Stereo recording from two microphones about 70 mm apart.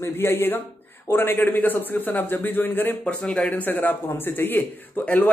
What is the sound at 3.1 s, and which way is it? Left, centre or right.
Speech, centre.